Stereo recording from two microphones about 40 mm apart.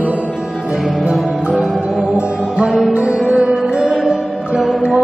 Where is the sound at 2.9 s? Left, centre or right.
Right.